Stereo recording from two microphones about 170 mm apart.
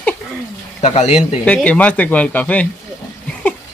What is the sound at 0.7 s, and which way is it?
Speech, 40° left (ahead or behind).